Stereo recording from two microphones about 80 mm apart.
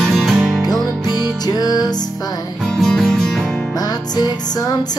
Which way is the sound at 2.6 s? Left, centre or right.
Centre.